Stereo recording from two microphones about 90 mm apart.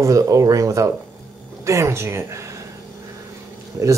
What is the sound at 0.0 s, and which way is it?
A woman's voice, 40° right (ahead or behind).